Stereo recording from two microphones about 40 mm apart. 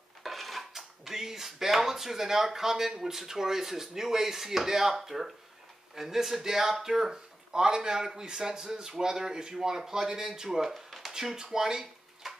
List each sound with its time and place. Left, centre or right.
0.2 s dishes: centre
11.1 s dishes: centre
11.5 s a sound: centre